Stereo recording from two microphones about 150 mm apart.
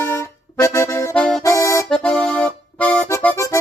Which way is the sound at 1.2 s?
5° left (ahead or behind).